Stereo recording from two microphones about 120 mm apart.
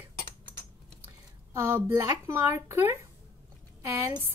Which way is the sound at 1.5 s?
20° right (ahead or behind).